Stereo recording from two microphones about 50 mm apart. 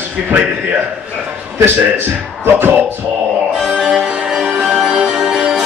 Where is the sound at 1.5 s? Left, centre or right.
Right.